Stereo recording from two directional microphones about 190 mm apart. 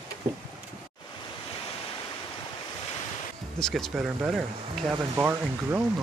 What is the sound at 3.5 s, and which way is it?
Speech, 5° left (ahead or behind).